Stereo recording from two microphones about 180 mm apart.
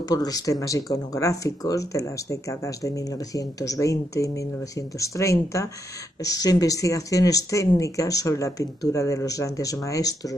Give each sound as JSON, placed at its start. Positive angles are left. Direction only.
{"t": 0.1, "sound": "speech", "side_deg": 20}
{"t": 3.3, "sound": "speech", "side_deg": 20}